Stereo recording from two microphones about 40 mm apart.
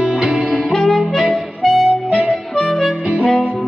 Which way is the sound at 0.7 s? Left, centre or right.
Centre.